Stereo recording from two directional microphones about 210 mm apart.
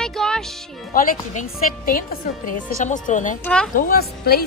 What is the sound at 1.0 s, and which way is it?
A woman's voice, 40° left (ahead or behind).